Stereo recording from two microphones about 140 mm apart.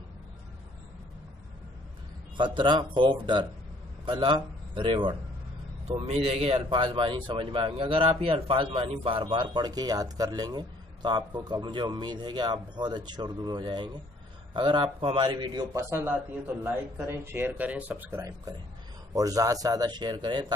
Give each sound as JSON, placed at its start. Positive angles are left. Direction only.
{"t": 2.3, "sound": "a man's voice", "side_deg": -35}
{"t": 5.9, "sound": "a man's voice", "side_deg": -50}